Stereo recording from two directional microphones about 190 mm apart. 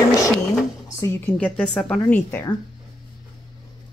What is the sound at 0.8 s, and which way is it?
Speech, 15° left (ahead or behind).